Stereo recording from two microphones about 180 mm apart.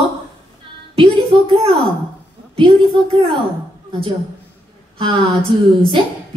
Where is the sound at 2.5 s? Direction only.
30° right (ahead or behind).